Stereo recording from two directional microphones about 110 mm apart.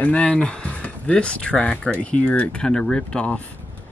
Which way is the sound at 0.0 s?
10° left (ahead or behind).